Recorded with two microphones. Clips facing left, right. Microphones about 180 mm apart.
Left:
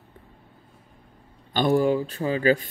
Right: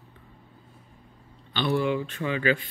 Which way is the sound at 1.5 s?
45° left (ahead or behind).